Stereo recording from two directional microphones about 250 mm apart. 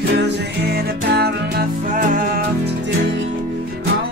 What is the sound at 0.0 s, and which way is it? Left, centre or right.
Music, right.